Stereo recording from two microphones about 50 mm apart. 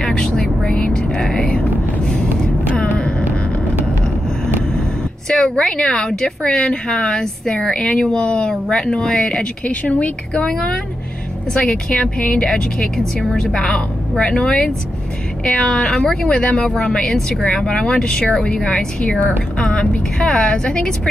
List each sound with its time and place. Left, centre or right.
0.0 s vehicle: centre
0.7 s music: left
1.6 s a sound: centre
5.3 s a woman's voice: centre
9.7 s a woman's voice: left; by 16.4 s centre
16.4 s a woman's voice: centre
20.2 s speech: centre
20.4 s speech: left